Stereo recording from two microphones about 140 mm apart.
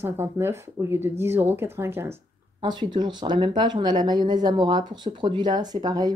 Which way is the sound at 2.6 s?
35° right (ahead or behind).